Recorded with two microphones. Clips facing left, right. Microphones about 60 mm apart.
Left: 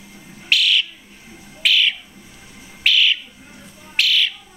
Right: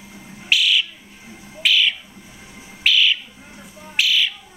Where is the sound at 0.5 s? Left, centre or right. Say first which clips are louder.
Even; centre.